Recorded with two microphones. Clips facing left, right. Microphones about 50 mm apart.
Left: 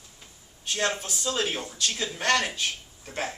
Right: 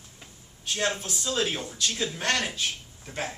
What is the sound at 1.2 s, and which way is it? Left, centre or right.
Speech, centre.